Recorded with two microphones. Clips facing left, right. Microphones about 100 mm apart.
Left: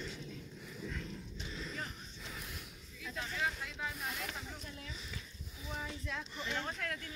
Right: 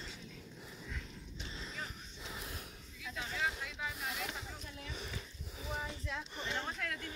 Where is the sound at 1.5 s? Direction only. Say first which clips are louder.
Left 5 dB; 25° right (ahead or behind).